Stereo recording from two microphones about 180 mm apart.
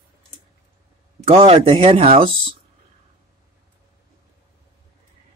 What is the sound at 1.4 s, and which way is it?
Speech, 30° right (ahead or behind).